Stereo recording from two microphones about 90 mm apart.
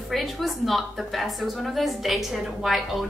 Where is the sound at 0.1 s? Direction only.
Centre (ahead or behind).